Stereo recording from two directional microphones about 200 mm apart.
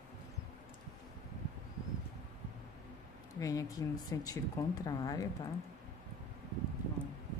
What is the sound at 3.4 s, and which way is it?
Speech, 15° left (ahead or behind).